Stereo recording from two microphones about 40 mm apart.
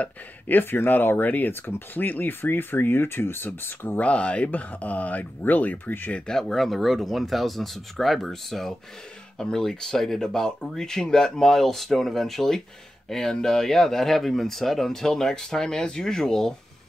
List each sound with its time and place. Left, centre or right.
0.0 s speech: left
3.4 s speech: left
4.0 s speech: left
4.5 s speech: left
5.9 s speech: left
6.1 s speech: centre
6.5 s speech: centre